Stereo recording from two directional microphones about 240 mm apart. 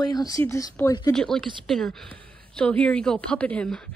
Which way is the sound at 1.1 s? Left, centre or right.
Centre.